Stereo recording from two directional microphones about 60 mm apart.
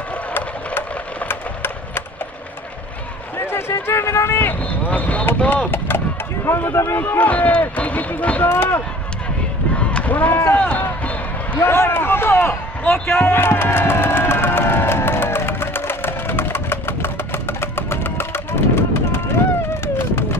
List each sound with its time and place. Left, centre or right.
0.7 s a sound: left
3.3 s run: left
4.6 s speech: left
5.7 s speech: left
7.0 s speech: left
8.5 s speech: left
9.8 s a sound: centre
10.5 s speech: left
10.8 s basketball bounce: left
11.6 s speech: left
12.9 s speech: centre
13.2 s crowd: left